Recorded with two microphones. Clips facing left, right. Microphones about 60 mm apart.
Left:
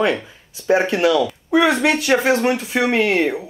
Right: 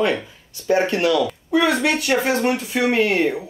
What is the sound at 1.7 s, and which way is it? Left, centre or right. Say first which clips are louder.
Speech: left 2 dB; left.